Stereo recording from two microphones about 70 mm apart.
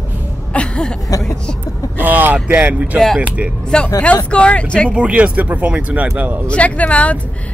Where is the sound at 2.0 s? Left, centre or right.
Right.